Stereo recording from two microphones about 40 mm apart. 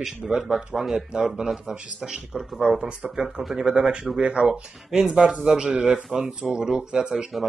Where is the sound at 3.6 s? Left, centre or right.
Right.